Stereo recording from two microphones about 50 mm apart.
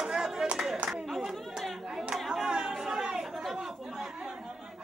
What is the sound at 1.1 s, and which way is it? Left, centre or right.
Chatter, centre.